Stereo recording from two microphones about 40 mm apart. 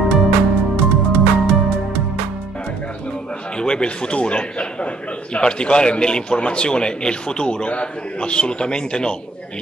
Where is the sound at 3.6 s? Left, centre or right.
Left.